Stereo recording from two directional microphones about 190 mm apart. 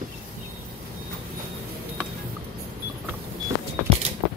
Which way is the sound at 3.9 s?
35° right (ahead or behind).